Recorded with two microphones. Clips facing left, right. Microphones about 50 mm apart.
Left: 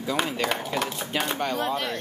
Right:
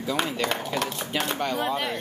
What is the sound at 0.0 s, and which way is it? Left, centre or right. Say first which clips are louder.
Speech: even; centre.